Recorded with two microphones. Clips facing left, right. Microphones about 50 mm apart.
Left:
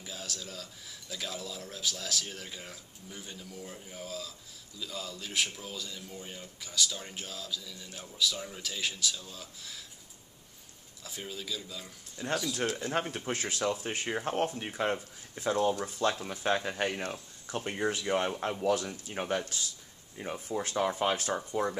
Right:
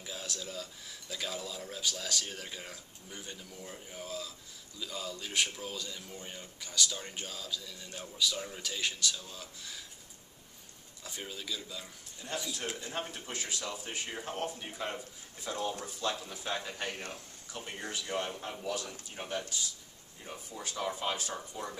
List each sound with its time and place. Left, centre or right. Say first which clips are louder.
0.0 s a man's voice: even; centre
11.1 s a man's voice: left 1 dB; centre
12.2 s speech: left 6 dB; left
21.5 s speech: left 12 dB; left